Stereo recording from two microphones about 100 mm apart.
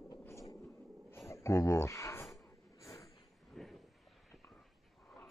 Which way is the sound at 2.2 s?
Centre (ahead or behind).